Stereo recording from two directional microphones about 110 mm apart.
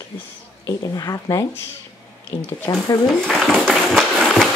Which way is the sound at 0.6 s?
35° left (ahead or behind).